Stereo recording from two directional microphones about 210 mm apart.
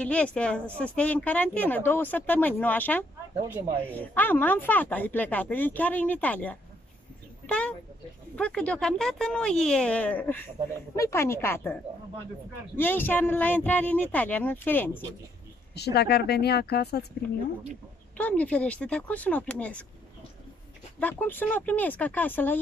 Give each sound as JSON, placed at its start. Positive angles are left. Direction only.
{"t": 0.0, "sound": "speech", "side_deg": 5}
{"t": 15.7, "sound": "speech", "side_deg": 50}
{"t": 18.1, "sound": "speech", "side_deg": 5}
{"t": 21.0, "sound": "speech", "side_deg": 10}